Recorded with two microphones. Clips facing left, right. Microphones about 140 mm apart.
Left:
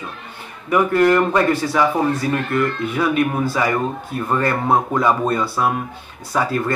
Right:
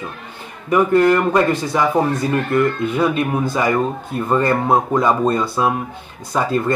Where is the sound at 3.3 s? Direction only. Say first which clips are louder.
Right 1 dB; 15° right (ahead or behind).